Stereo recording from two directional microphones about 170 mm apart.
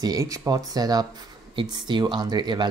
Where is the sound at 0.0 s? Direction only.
20° right (ahead or behind).